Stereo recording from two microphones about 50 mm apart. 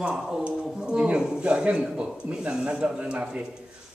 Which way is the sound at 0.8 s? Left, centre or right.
Centre.